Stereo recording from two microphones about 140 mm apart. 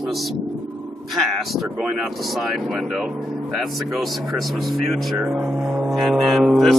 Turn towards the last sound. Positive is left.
turn(degrees=0)  # may be behind; listen again after turning